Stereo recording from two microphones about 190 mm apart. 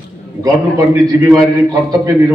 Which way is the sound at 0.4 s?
20° right (ahead or behind).